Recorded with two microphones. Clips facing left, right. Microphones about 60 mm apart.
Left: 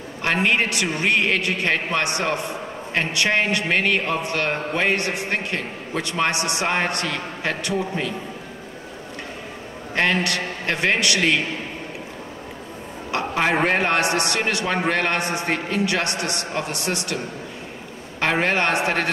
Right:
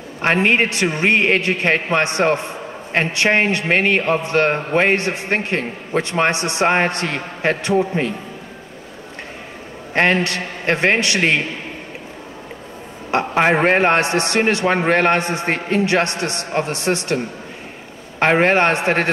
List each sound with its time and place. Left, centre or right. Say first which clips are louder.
0.2 s a man's voice: right 4 dB; right
9.9 s a man's voice: right 4 dB; right
13.1 s a man's voice: right 5 dB; right
18.2 s a man's voice: right 6 dB; right